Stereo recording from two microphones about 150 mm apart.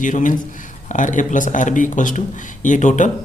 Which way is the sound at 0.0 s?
60° left (ahead or behind).